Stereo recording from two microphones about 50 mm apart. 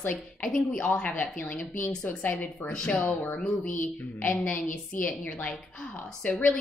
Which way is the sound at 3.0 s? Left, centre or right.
Left.